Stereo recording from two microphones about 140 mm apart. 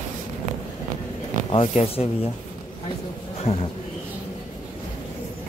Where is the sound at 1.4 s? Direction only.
40° left (ahead or behind).